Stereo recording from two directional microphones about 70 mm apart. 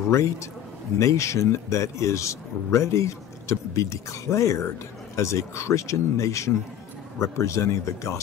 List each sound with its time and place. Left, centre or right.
0.1 s speech: left